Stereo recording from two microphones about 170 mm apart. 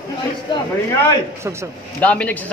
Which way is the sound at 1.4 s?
15° right (ahead or behind).